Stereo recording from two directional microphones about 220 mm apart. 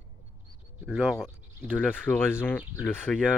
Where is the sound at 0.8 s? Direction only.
5° right (ahead or behind).